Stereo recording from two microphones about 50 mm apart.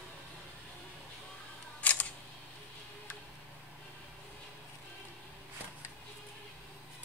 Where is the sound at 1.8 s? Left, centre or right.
Left.